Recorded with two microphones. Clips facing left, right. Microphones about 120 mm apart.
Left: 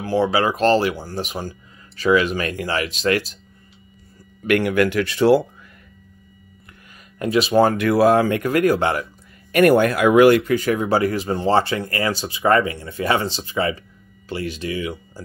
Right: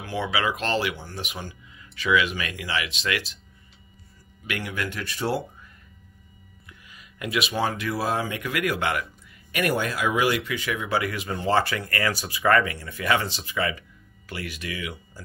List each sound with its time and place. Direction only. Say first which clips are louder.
0.0 s speech: left 8 dB; 35° left (ahead or behind)
4.5 s speech: left 13 dB; 65° left (ahead or behind); by 5.7 s 90° left
6.9 s a sound: left 9 dB; 45° left (ahead or behind)
7.2 s speech: left 8 dB; 30° left (ahead or behind)
7.5 s speech: left 15 dB; 55° left (ahead or behind); by 9.0 s 35° left (ahead or behind)
9.5 s speech: left 11 dB; 50° left (ahead or behind); by 15.2 s 30° left (ahead or behind)